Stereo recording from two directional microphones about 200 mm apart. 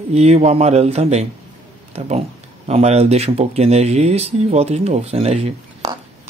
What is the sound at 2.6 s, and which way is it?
Speech, 30° right (ahead or behind).